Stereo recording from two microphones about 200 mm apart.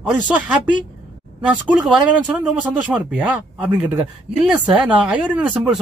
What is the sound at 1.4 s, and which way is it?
A woman's voice, 5° right (ahead or behind).